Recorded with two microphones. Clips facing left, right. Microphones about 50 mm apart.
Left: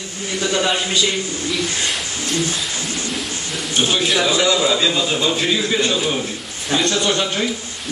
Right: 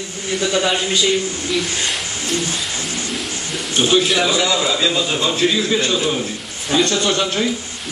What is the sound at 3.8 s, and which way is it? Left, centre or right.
A man's voice, centre.